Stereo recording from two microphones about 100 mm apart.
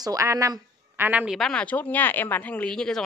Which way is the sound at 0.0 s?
35° right (ahead or behind).